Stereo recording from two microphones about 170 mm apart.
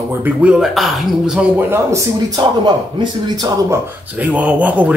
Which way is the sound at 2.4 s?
25° right (ahead or behind).